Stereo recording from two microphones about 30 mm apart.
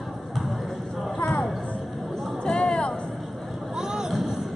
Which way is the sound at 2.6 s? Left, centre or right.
Left.